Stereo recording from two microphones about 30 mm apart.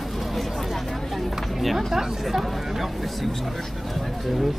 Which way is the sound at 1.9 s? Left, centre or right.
Centre.